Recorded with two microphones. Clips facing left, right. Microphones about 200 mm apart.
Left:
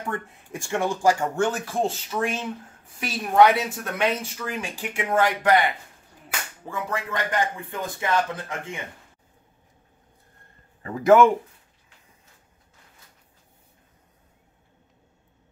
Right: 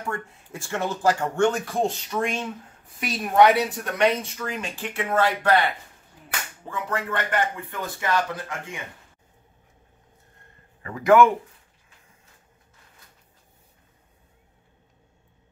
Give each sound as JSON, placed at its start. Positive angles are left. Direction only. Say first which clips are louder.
{"t": 0.1, "sound": "speech", "louder": "left 1 dB", "side_deg": 15}
{"t": 6.7, "sound": "speech", "louder": "right 1 dB", "side_deg": 10}
{"t": 10.8, "sound": "a man's voice", "louder": "left 1 dB", "side_deg": 25}